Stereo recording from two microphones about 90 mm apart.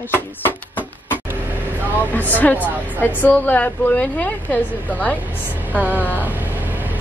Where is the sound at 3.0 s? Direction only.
20° left (ahead or behind).